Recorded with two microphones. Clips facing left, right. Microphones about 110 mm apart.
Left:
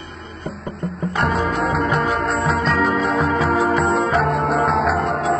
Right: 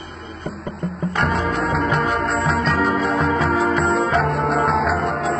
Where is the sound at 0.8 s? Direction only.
Centre (ahead or behind).